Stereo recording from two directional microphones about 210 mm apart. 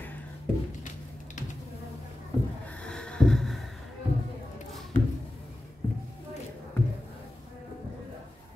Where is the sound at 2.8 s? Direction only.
5° left (ahead or behind).